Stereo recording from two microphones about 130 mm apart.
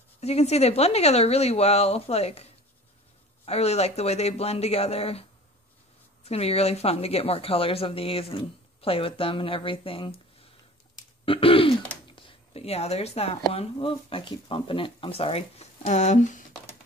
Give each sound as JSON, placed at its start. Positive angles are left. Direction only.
{"t": 0.2, "sound": "speech", "side_deg": 55}
{"t": 6.2, "sound": "speech", "side_deg": 50}